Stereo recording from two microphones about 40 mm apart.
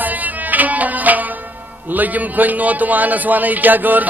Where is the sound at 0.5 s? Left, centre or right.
Right.